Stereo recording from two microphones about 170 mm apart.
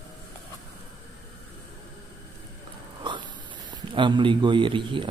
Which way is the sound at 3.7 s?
30° right (ahead or behind).